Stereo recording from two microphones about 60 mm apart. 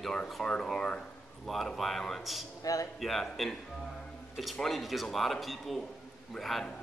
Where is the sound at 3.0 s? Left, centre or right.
Centre.